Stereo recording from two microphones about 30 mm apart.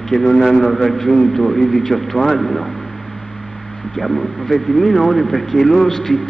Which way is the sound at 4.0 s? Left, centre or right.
Centre.